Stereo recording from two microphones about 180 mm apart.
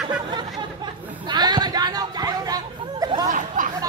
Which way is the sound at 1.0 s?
10° right (ahead or behind).